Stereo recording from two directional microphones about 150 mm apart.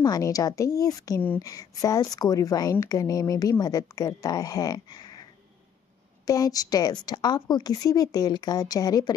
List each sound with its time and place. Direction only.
0.0 s a woman's voice: 25° left (ahead or behind)
6.2 s a woman's voice: 25° left (ahead or behind)